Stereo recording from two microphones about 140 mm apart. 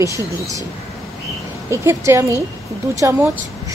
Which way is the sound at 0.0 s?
25° right (ahead or behind).